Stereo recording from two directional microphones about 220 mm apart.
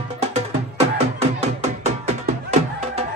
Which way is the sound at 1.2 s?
30° right (ahead or behind).